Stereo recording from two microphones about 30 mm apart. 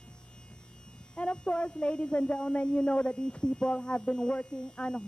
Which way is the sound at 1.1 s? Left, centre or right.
Left.